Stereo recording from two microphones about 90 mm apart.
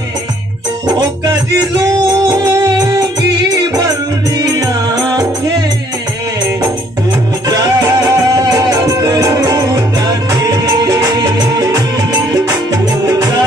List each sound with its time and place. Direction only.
0.8 s music: 50° right (ahead or behind)
7.4 s music: 50° right (ahead or behind)